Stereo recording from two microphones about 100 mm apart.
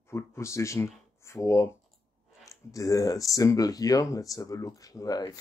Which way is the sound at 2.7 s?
35° left (ahead or behind).